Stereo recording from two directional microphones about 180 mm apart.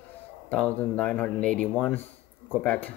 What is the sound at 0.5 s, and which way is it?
Speech, 10° left (ahead or behind).